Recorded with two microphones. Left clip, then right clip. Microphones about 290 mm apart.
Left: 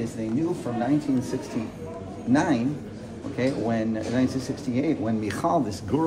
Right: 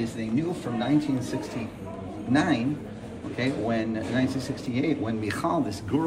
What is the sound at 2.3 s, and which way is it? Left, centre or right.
A man's voice, left.